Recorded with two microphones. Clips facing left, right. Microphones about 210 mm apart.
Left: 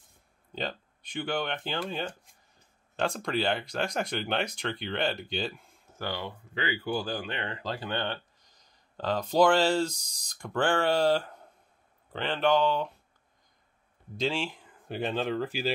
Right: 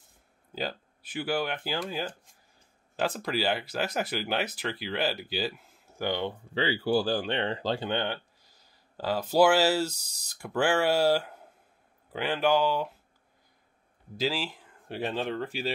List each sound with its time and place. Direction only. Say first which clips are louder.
0.5 s speech: right 1 dB; 5° right (ahead or behind)
5.9 s speech: right 5 dB; 20° right (ahead or behind)
8.0 s speech: right 2 dB; 10° right (ahead or behind)
14.1 s speech: even; 5° right (ahead or behind)